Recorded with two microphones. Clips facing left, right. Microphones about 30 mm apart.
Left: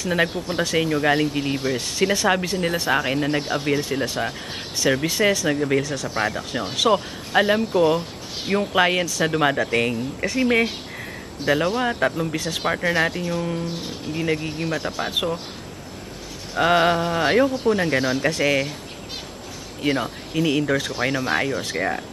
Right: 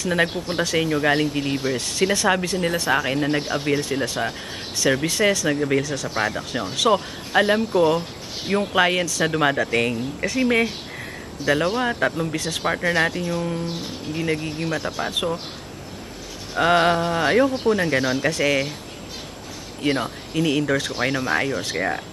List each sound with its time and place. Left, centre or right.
0.0 s speech: centre
6.6 s speech: centre
6.9 s speech: centre
16.5 s speech: centre
19.8 s speech: centre